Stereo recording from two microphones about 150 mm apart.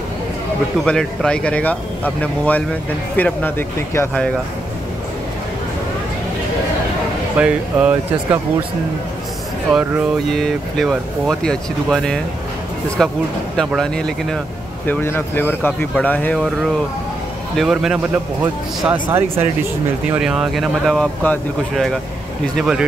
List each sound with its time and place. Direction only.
0.8 s speech: 5° left (ahead or behind)
7.3 s speech: 10° right (ahead or behind)
9.7 s speech: 10° right (ahead or behind)
10.3 s speech: centre (ahead or behind)
16.3 s speech: centre (ahead or behind)
20.1 s speech: 5° right (ahead or behind)
22.6 s speech: 5° right (ahead or behind)